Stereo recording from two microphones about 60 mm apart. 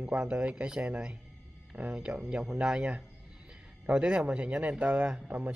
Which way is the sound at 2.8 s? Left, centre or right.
Centre.